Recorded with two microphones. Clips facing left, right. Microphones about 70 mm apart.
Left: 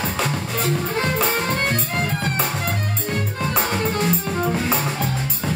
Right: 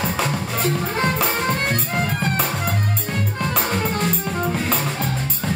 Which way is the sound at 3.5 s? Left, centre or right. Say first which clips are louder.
Left 1 dB; centre.